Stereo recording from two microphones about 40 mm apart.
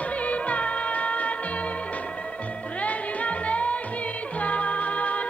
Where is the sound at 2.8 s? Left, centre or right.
Left.